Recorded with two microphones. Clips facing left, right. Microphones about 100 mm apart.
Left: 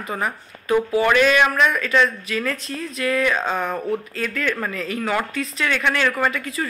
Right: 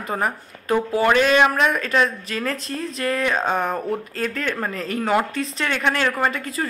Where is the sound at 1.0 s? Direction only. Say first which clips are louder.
Right 3 dB; 35° right (ahead or behind).